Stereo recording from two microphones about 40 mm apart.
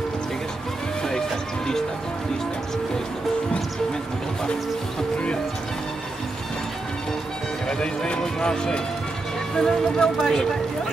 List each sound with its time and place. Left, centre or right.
7.6 s speech: left